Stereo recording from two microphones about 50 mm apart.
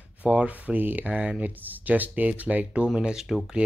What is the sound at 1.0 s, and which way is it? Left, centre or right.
Speech, right.